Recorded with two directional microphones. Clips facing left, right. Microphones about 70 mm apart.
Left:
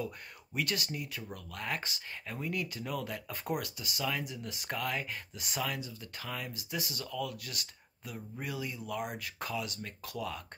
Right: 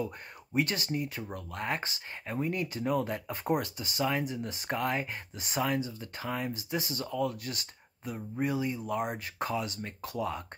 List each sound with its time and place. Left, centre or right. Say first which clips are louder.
0.0 s speech: right 3 dB; right